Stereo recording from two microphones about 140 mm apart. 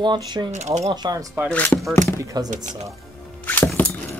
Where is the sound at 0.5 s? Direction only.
55° right (ahead or behind).